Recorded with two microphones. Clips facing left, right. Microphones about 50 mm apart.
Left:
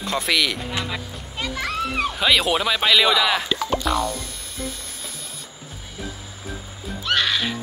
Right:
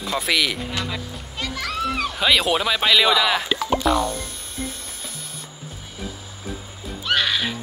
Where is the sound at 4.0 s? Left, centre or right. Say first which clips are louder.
Right 1 dB; right.